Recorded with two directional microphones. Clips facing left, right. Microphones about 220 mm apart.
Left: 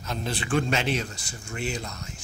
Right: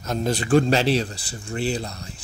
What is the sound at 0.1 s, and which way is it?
Speech, 40° right (ahead or behind).